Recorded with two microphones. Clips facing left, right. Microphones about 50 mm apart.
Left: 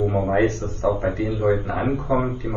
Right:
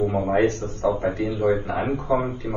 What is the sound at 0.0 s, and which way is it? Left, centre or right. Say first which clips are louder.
A man's voice: left 1 dB; left.